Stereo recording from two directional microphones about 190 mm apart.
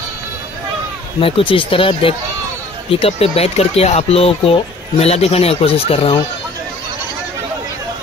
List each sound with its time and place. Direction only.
1.2 s speech: 25° left (ahead or behind)